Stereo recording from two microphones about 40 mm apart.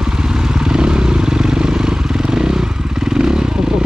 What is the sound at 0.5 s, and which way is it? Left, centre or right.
Vehicle, centre.